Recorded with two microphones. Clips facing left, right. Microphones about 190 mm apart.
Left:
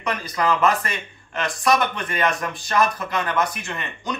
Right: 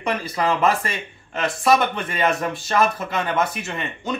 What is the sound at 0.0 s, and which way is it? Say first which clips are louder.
Speech: right 1 dB; 30° right (ahead or behind).